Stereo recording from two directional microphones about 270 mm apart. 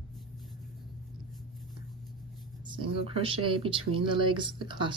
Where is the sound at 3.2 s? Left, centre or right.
Centre.